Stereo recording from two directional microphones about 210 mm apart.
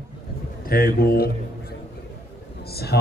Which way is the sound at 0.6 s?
45° left (ahead or behind).